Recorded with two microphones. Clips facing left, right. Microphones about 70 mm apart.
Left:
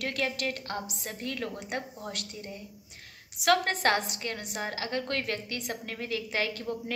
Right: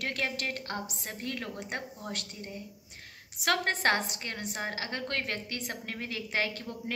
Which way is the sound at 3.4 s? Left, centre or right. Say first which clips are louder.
Left 3 dB; right.